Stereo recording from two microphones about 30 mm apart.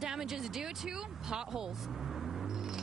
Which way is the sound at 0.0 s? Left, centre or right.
Centre.